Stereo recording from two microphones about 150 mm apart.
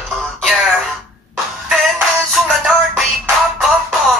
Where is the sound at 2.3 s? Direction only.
Centre (ahead or behind).